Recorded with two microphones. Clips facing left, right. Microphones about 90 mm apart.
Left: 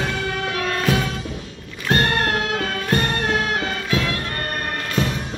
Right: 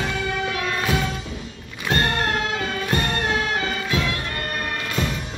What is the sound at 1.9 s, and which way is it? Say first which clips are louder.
Music: left 2 dB; 45° left (ahead or behind).